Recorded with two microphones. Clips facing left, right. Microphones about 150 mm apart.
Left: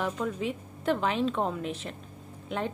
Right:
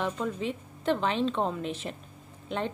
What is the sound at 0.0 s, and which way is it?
A woman's voice, 5° left (ahead or behind).